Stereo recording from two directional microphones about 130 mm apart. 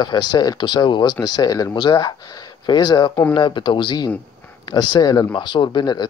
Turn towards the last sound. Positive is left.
turn(degrees=35)  # may be behind; listen again after turning